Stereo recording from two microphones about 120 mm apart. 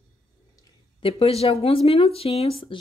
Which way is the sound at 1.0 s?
55° left (ahead or behind).